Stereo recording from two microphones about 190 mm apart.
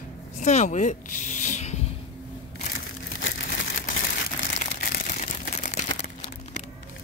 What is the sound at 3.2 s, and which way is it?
Crumpling, 75° left (ahead or behind).